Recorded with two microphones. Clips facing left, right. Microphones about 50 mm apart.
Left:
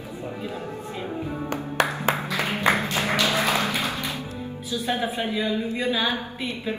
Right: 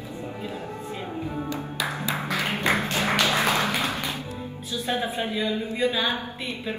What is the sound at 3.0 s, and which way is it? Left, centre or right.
Music, right.